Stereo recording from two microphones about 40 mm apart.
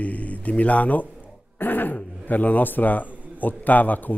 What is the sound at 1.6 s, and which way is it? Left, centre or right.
A man's voice, left.